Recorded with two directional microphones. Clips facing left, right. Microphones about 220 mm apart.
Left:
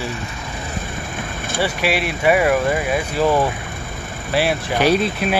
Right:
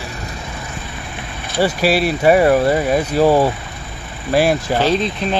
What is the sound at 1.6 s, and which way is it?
Speech, 40° right (ahead or behind).